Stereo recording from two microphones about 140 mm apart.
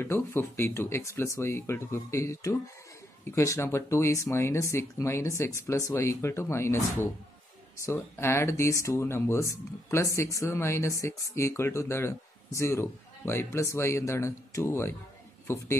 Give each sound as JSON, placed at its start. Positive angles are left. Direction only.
{"t": 0.0, "sound": "a man's voice", "side_deg": 15}